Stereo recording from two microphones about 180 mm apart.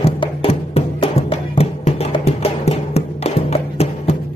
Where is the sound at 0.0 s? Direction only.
30° left (ahead or behind).